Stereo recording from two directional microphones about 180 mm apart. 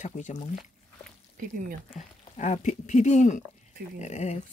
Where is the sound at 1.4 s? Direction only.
50° right (ahead or behind).